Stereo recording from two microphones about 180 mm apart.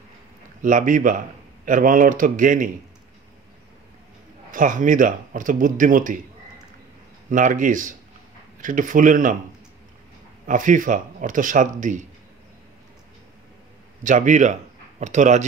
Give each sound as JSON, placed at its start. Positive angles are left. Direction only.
{"t": 0.6, "sound": "speech", "side_deg": -45}
{"t": 4.5, "sound": "speech", "side_deg": -45}
{"t": 7.2, "sound": "speech", "side_deg": -45}
{"t": 10.4, "sound": "speech", "side_deg": -45}
{"t": 14.0, "sound": "speech", "side_deg": -45}